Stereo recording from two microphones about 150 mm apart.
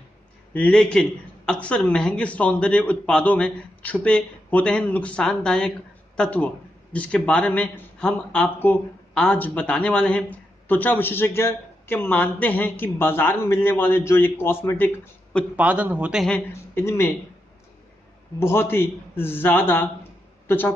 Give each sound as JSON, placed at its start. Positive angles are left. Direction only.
{"t": 0.5, "sound": "a man's voice", "side_deg": 10}
{"t": 15.5, "sound": "a man's voice", "side_deg": -10}
{"t": 16.3, "sound": "a man's voice", "side_deg": 15}
{"t": 18.4, "sound": "a man's voice", "side_deg": 15}